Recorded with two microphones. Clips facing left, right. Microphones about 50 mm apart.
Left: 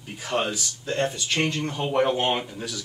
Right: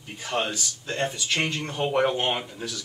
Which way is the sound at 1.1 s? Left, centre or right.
Centre.